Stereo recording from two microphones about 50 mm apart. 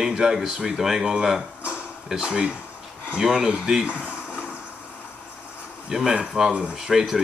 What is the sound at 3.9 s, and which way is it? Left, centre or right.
Speech, right.